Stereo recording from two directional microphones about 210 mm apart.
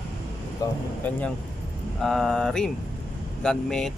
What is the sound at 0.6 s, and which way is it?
Speech, 15° left (ahead or behind).